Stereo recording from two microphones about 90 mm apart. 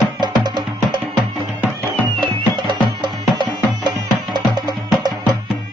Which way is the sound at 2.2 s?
60° right (ahead or behind).